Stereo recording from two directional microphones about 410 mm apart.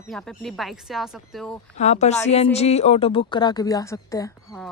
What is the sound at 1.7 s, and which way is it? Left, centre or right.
Speech, centre.